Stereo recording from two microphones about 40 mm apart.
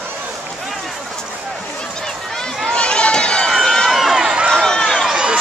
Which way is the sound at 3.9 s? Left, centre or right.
Centre.